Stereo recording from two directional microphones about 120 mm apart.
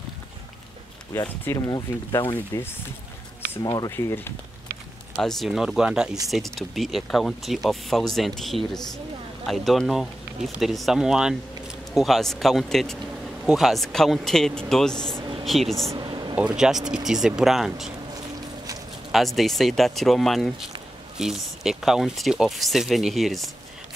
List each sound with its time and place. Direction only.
1.2 s speech: 15° left (ahead or behind)
2.5 s speech: 30° left (ahead or behind)
3.9 s speech: 20° left (ahead or behind)
5.1 s speech: 5° left (ahead or behind)
16.0 s a sound: 40° right (ahead or behind)
16.3 s speech: 5° right (ahead or behind)
19.1 s speech: centre (ahead or behind)